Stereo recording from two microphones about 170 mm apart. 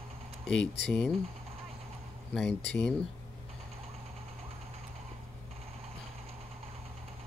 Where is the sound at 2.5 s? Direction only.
90° left.